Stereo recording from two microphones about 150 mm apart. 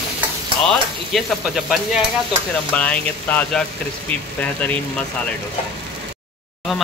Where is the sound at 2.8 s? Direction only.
10° left (ahead or behind).